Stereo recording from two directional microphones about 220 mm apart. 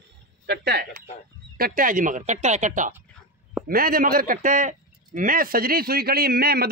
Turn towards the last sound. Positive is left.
turn(degrees=-45)  # may be behind; listen again after turning